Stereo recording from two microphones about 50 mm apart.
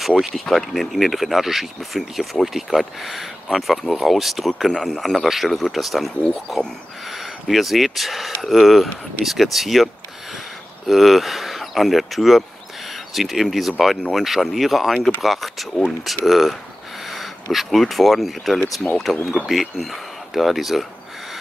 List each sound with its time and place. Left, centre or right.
0.5 s speech: centre
4.7 s a man's voice: centre
5.2 s speech: centre
10.9 s speech: centre
15.0 s speech: left
15.2 s speech: centre